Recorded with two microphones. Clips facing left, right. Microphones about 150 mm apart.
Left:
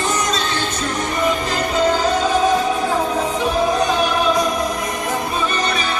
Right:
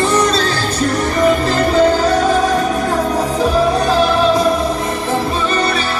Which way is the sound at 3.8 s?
30° right (ahead or behind).